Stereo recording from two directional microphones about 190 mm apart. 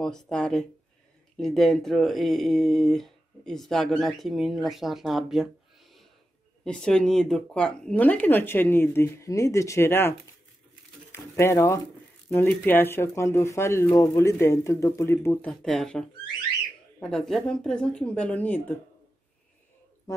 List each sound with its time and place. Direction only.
0.0 s speech: 5° left (ahead or behind)
15.6 s speech: centre (ahead or behind)